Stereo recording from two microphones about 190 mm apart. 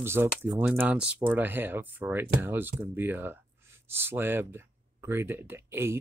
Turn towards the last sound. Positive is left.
turn(degrees=-15)  # may be behind; listen again after turning